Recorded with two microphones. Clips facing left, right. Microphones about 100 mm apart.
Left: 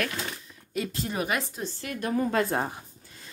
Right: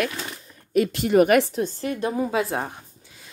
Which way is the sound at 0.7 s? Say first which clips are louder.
Right 12 dB; 75° right (ahead or behind).